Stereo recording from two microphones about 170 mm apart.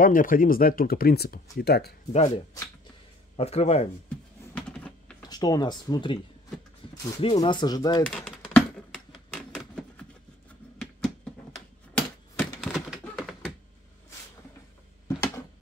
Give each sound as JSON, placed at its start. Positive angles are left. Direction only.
{"t": 0.0, "sound": "speech", "side_deg": 55}
{"t": 2.1, "sound": "speech", "side_deg": 40}
{"t": 4.6, "sound": "typing", "side_deg": 5}
{"t": 5.3, "sound": "speech", "side_deg": 25}
{"t": 6.8, "sound": "a sound", "side_deg": 30}
{"t": 7.2, "sound": "speech", "side_deg": 35}
{"t": 8.1, "sound": "a sound", "side_deg": 5}
{"t": 11.5, "sound": "typewriter", "side_deg": 0}
{"t": 12.5, "sound": "a sound", "side_deg": 0}